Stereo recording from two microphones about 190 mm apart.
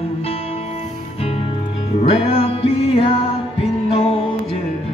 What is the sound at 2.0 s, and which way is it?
Music, 30° left (ahead or behind).